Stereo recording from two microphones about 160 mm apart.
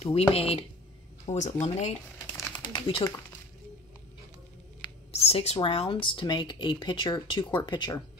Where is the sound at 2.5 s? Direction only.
30° left (ahead or behind).